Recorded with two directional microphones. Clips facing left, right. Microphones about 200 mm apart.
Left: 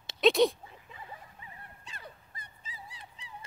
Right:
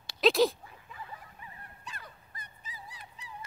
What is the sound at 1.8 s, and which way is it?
Dog, 25° left (ahead or behind).